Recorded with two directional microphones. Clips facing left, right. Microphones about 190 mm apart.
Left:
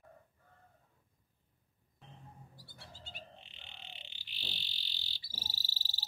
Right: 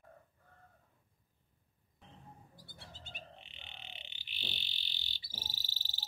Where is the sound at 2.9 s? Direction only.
20° right (ahead or behind).